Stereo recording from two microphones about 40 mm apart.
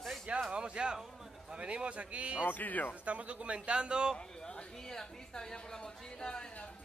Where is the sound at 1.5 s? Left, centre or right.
Right.